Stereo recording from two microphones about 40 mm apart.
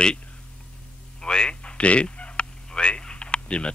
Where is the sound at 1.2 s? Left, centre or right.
Left.